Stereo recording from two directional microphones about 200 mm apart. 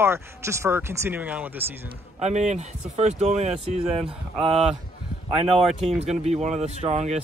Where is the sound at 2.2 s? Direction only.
35° right (ahead or behind).